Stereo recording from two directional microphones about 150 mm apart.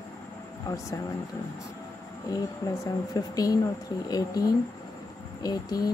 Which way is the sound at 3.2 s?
25° left (ahead or behind).